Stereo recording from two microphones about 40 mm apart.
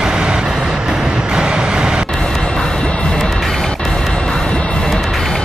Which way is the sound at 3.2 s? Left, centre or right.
Centre.